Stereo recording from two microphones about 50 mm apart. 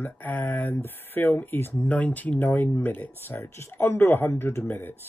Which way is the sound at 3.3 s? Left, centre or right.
Left.